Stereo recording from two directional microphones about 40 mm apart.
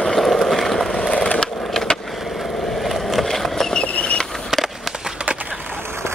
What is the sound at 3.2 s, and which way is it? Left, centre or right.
Vehicle, centre.